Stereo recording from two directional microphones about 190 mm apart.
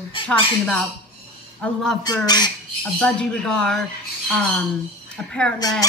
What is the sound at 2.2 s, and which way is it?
Speech, 20° left (ahead or behind).